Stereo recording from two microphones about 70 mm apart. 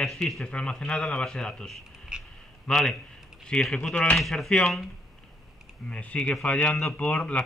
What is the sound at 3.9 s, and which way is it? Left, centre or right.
Speech, left.